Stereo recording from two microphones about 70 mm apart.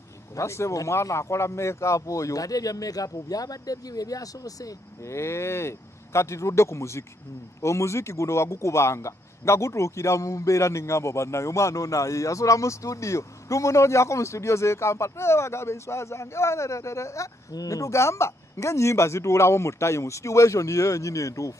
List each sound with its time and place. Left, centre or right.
0.4 s speech: left
5.1 s speech: left